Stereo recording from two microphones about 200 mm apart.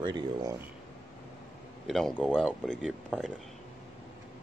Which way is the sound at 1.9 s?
5° left (ahead or behind).